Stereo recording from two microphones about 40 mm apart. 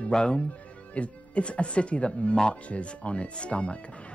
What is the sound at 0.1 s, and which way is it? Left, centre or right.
Speech, left.